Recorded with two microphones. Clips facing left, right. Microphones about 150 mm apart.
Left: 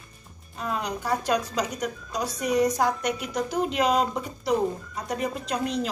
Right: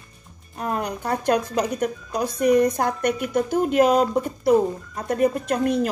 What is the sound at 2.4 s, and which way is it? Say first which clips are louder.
A woman's voice: right 5 dB; 60° right (ahead or behind).